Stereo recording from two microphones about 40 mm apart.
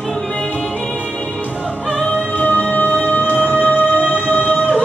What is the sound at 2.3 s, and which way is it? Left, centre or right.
Music, left.